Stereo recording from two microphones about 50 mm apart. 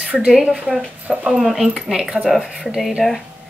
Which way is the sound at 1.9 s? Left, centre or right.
Centre.